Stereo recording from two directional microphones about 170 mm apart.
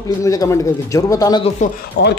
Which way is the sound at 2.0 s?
90° left.